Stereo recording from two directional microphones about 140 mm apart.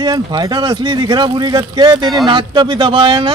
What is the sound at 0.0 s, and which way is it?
Speech, 30° right (ahead or behind).